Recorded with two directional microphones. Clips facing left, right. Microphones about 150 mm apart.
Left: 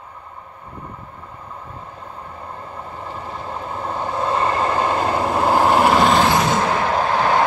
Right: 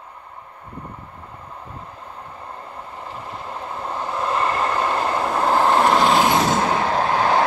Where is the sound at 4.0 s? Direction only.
25° left (ahead or behind); by 6.1 s 5° left (ahead or behind).